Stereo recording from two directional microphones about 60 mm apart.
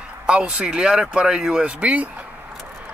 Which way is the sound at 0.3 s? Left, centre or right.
Centre.